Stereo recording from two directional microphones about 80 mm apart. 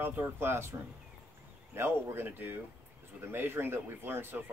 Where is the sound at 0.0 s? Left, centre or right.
Right.